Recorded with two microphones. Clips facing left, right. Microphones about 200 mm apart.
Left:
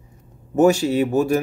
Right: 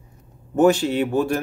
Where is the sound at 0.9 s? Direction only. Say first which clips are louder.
Left 2 dB; 40° left (ahead or behind).